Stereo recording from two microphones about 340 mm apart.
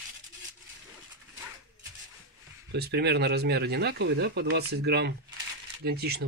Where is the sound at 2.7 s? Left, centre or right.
Right.